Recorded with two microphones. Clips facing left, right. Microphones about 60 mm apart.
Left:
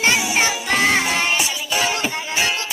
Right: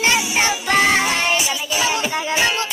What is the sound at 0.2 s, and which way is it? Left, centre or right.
Music, centre.